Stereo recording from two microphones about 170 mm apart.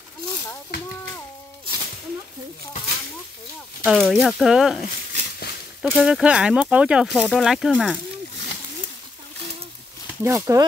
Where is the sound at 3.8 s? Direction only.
Centre (ahead or behind).